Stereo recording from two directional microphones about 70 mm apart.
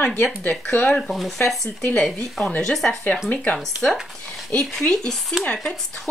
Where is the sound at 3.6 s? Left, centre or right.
Centre.